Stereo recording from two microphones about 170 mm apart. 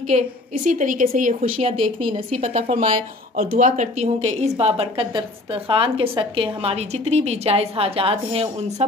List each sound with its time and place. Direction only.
0.1 s a woman's voice: 40° right (ahead or behind)
0.7 s speech: 50° right (ahead or behind)
1.7 s a woman's voice: 30° right (ahead or behind)